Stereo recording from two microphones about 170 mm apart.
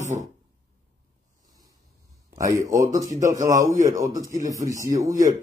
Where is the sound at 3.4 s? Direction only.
20° right (ahead or behind).